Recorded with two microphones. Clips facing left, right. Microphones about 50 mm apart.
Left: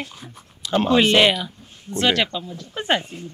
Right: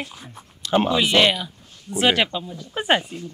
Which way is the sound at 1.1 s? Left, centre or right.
Centre.